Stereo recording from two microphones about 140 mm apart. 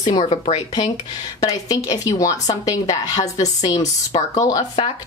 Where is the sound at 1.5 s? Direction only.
25° left (ahead or behind).